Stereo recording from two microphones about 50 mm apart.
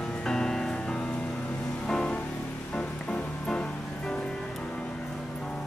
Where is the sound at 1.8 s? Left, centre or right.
Centre.